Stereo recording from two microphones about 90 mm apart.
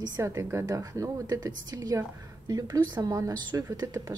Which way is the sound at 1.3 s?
50° right (ahead or behind).